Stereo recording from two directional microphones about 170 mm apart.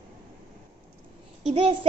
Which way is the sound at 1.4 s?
35° right (ahead or behind).